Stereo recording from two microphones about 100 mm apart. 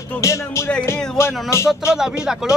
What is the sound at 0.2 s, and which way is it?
Music, 30° left (ahead or behind).